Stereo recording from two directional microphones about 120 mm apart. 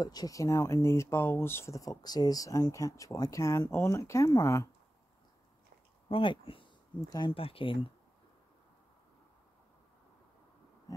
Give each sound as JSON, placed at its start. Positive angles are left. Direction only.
{"t": 0.0, "sound": "speech", "side_deg": 30}
{"t": 6.0, "sound": "speech", "side_deg": 45}
{"t": 7.0, "sound": "speech", "side_deg": 30}
{"t": 7.2, "sound": "speech", "side_deg": 50}